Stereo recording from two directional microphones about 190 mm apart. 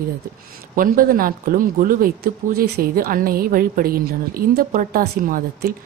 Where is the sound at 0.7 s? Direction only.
50° right (ahead or behind).